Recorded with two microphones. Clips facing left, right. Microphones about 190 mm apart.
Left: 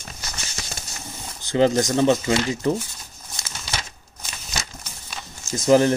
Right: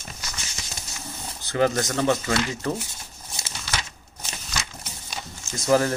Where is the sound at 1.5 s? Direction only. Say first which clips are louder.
Left 4 dB; 20° left (ahead or behind).